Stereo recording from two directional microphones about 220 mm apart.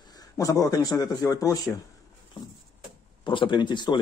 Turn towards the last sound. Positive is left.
turn(degrees=20)  # may be behind; listen again after turning